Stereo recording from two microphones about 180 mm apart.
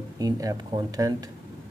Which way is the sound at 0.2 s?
20° right (ahead or behind).